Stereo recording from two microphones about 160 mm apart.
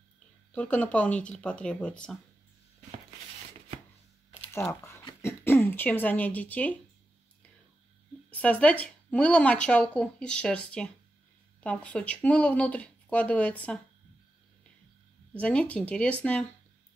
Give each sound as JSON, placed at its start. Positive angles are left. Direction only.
{"t": 0.5, "sound": "speech", "side_deg": 10}
{"t": 4.5, "sound": "speech", "side_deg": 15}
{"t": 8.3, "sound": "speech", "side_deg": 10}
{"t": 15.3, "sound": "speech", "side_deg": 10}